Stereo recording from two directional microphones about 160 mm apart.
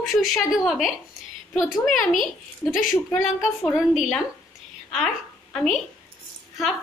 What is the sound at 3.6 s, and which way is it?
A woman's voice, centre (ahead or behind).